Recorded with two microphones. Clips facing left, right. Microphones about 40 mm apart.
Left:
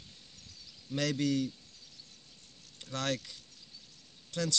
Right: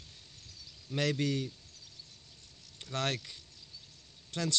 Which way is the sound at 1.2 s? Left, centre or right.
Right.